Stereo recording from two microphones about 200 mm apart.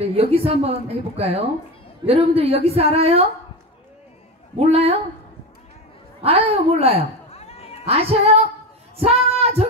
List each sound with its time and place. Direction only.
0.0 s a woman's voice: 30° right (ahead or behind)
4.6 s speech: 30° right (ahead or behind)
6.2 s a woman's voice: 30° right (ahead or behind)
7.2 s cat: 30° left (ahead or behind)
7.8 s speech: 30° right (ahead or behind)
8.9 s child singing: 30° right (ahead or behind)